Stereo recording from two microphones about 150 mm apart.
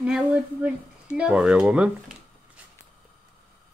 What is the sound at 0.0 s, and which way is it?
Speech, 10° right (ahead or behind).